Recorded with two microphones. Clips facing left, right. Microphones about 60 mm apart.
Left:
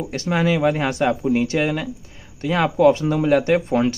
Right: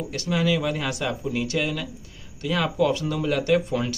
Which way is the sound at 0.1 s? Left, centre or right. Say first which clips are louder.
Left 4 dB; left.